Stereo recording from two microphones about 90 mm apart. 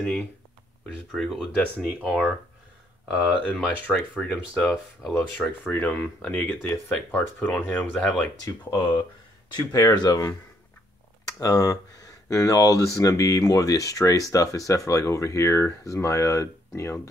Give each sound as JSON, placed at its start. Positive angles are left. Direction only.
{"t": 1.1, "sound": "speech", "side_deg": 5}
{"t": 3.1, "sound": "speech", "side_deg": -5}
{"t": 3.4, "sound": "speech", "side_deg": 10}
{"t": 4.6, "sound": "speech", "side_deg": 0}
{"t": 5.1, "sound": "speech", "side_deg": 20}
{"t": 8.4, "sound": "speech", "side_deg": 35}
{"t": 8.7, "sound": "speech", "side_deg": 60}
{"t": 9.7, "sound": "speech", "side_deg": 40}